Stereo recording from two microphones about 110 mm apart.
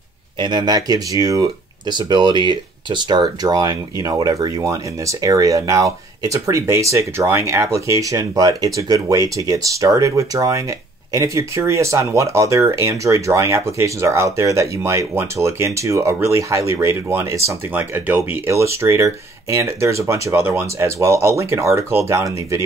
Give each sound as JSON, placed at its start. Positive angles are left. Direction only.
{"t": 0.4, "sound": "speech", "side_deg": -40}
{"t": 18.5, "sound": "speech", "side_deg": -25}